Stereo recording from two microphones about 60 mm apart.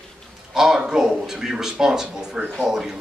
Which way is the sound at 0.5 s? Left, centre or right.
Centre.